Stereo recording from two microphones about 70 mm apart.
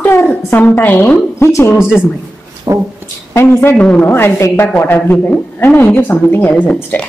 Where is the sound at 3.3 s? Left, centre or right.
Left.